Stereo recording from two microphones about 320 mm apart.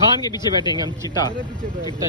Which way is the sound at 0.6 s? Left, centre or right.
Centre.